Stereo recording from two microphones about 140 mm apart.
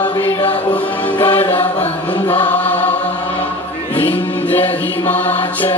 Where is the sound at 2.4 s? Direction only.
15° left (ahead or behind).